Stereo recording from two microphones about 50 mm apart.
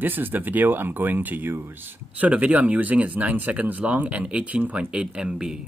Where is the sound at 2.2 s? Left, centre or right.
Right.